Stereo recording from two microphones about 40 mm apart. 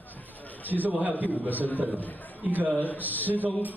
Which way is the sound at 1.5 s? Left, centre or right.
Left.